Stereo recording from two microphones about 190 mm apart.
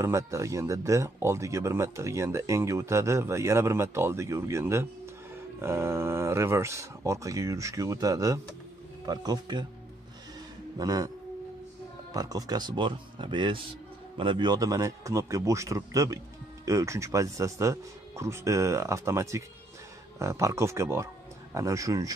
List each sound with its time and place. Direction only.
0.0 s speech: 15° right (ahead or behind)
10.8 s speech: 20° right (ahead or behind)
12.1 s speech: 20° right (ahead or behind)